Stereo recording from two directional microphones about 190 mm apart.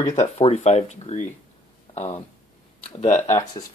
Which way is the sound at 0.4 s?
35° left (ahead or behind).